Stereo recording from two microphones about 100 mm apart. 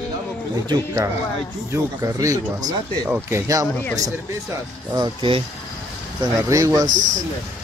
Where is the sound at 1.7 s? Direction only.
35° right (ahead or behind).